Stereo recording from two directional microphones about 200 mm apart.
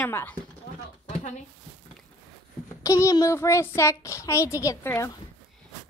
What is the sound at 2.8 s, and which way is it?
A child's voice, 15° left (ahead or behind).